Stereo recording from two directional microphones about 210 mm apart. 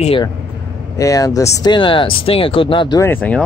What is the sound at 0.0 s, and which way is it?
Speech, 25° left (ahead or behind).